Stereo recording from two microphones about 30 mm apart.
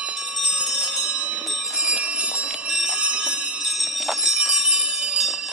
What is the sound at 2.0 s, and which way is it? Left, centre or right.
Bell, right.